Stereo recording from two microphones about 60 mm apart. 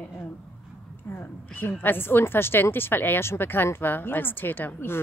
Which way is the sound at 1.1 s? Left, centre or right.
Left.